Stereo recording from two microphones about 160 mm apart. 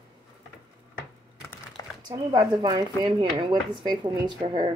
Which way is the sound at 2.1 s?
25° right (ahead or behind).